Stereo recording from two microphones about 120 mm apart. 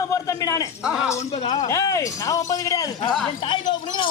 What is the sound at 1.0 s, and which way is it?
A man's voice, 30° left (ahead or behind).